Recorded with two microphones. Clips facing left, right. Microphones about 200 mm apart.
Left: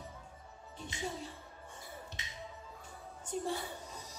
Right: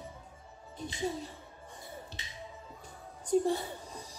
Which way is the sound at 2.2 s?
30° right (ahead or behind).